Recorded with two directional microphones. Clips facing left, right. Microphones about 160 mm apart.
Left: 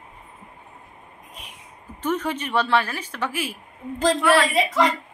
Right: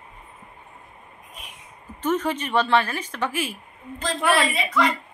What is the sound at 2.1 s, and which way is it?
A woman's voice, 10° left (ahead or behind).